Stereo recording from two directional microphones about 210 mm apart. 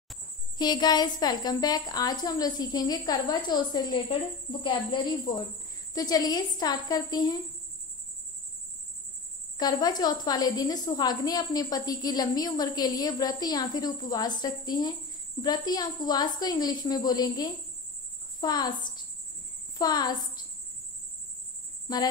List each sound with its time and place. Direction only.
0.6 s a woman's voice: 20° left (ahead or behind)
5.9 s a woman's voice: 20° left (ahead or behind)
9.6 s a woman's voice: 20° left (ahead or behind)